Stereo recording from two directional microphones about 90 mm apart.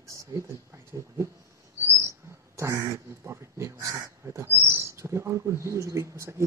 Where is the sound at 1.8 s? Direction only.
30° right (ahead or behind).